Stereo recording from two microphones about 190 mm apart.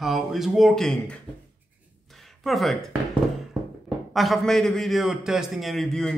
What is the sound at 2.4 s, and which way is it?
Speech, centre (ahead or behind).